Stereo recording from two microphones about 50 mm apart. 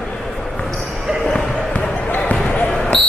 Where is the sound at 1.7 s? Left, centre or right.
Left.